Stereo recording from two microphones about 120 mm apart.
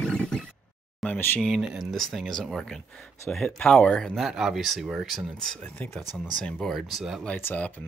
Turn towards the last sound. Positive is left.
turn(degrees=15)  # may be behind; listen again after turning